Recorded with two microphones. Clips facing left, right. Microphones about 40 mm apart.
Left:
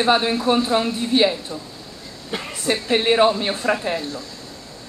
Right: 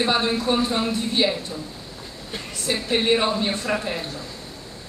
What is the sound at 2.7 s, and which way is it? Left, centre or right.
Speech, centre.